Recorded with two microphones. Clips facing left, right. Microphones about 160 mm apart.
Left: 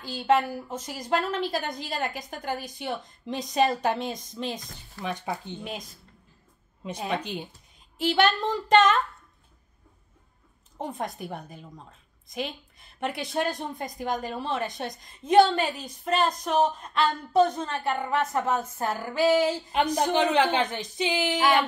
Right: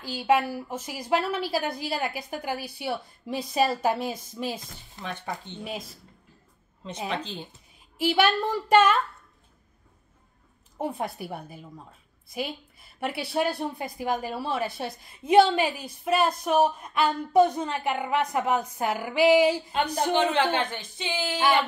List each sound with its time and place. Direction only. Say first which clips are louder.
0.0 s a woman's voice: even; 10° right (ahead or behind)
5.0 s speech: left 3 dB; 15° left (ahead or behind)
5.6 s speech: right 1 dB; 5° right (ahead or behind)
7.1 s speech: left 2 dB; 10° left (ahead or behind)
8.0 s a woman's voice: even; 10° right (ahead or behind)
10.8 s a woman's voice: right 2 dB; 10° right (ahead or behind)
20.5 s speech: left 2 dB; 20° left (ahead or behind)